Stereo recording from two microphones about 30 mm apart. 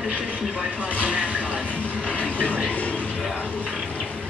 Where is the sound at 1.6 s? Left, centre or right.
Left.